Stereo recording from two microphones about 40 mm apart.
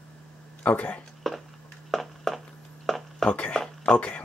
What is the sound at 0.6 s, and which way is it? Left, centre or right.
Speech, left.